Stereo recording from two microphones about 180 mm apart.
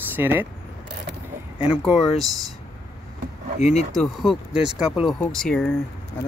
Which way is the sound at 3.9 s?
Centre (ahead or behind).